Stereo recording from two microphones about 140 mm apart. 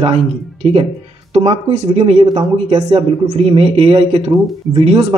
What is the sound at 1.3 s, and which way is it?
Speech, 50° right (ahead or behind).